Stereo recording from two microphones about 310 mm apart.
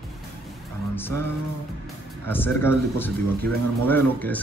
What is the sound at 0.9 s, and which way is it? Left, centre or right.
Vehicle, centre.